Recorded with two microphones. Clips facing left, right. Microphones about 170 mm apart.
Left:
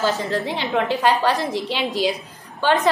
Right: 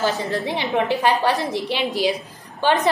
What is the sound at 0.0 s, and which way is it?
A woman's voice, 15° right (ahead or behind).